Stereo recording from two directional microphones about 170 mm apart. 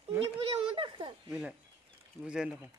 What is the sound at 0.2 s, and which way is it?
Goat, 30° right (ahead or behind).